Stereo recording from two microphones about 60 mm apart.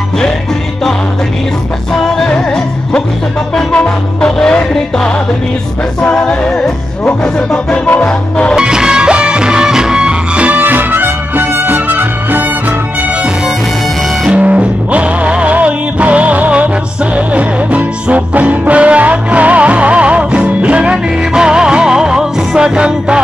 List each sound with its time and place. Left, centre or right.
2.1 s music: centre
8.5 s music: centre; by 12.7 s right
14.3 s music: right